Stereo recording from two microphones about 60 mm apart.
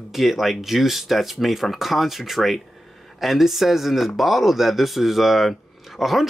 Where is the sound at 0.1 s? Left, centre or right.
Centre.